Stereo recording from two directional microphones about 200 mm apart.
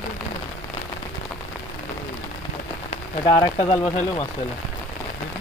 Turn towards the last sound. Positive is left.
turn(degrees=20)  # may be behind; listen again after turning